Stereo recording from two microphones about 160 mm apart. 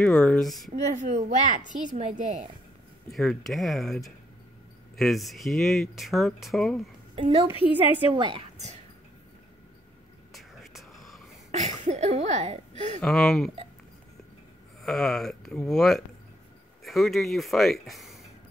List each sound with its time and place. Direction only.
0.0 s speech: 5° left (ahead or behind)
0.8 s speech: 45° right (ahead or behind)
3.1 s speech: centre (ahead or behind)
7.2 s a woman's voice: 35° right (ahead or behind)
10.3 s whispering: centre (ahead or behind)
11.5 s speech: 45° right (ahead or behind)
13.0 s speech: centre (ahead or behind)
14.8 s speech: centre (ahead or behind)